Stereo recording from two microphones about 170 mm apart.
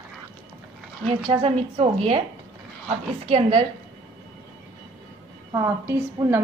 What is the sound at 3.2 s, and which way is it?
Speech, 35° right (ahead or behind).